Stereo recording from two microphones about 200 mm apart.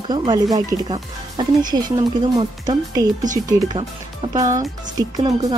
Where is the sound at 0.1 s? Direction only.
20° right (ahead or behind).